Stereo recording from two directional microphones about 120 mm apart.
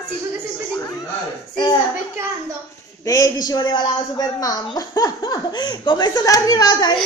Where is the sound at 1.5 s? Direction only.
35° left (ahead or behind).